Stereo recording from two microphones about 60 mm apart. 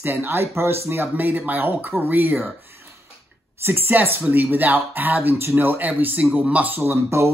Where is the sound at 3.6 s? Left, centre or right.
Right.